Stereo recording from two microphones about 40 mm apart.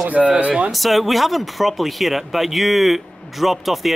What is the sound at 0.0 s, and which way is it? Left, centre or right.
Speech, right.